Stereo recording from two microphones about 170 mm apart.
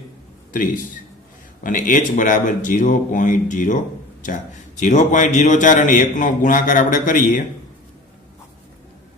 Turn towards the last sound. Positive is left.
turn(degrees=50)  # may be behind; listen again after turning